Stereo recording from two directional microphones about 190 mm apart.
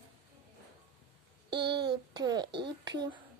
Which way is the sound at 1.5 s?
25° right (ahead or behind).